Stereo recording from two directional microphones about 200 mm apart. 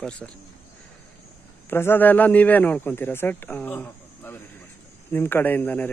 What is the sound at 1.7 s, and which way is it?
A man's voice, 10° left (ahead or behind).